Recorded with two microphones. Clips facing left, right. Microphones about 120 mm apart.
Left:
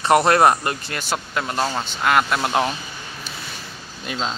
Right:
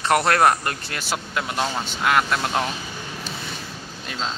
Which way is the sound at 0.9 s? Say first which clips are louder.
Left 2 dB; centre (ahead or behind).